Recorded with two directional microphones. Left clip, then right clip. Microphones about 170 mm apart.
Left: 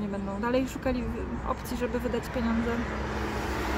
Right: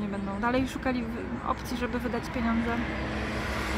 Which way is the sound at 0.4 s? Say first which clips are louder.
Even; centre (ahead or behind).